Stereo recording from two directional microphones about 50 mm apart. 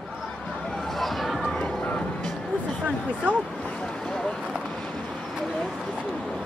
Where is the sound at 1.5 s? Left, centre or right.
Left.